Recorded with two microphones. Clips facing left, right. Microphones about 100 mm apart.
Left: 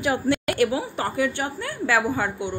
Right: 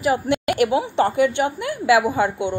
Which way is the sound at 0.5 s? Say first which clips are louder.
Right 4 dB; 20° right (ahead or behind).